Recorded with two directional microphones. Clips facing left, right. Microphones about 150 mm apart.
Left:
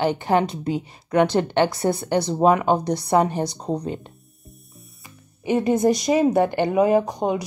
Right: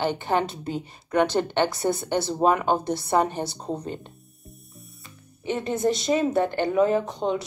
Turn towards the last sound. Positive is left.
turn(degrees=20)  # may be behind; listen again after turning